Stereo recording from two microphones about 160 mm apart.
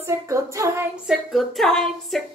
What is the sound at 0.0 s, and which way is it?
Female singing, 15° right (ahead or behind).